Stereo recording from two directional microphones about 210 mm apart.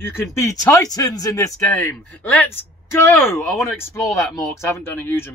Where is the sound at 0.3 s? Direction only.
15° left (ahead or behind).